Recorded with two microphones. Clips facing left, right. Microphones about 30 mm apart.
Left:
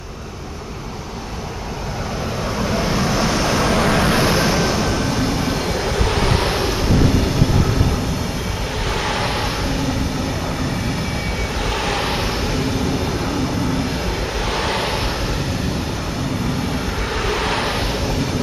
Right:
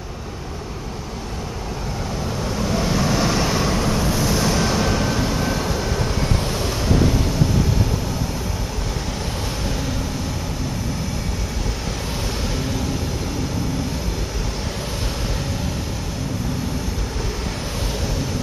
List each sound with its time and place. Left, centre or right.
2.6 s vehicle: centre
3.7 s vehicle: left
4.3 s vehicle: left
4.6 s vehicle: centre
5.2 s vehicle: centre
5.9 s vehicle: left
6.5 s vehicle: left